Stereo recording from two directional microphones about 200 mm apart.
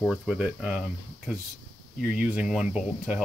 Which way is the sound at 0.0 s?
Centre (ahead or behind).